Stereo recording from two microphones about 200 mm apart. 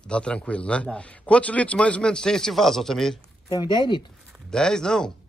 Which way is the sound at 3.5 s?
20° left (ahead or behind).